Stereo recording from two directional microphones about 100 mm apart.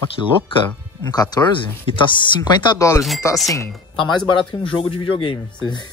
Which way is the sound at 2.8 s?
35° left (ahead or behind).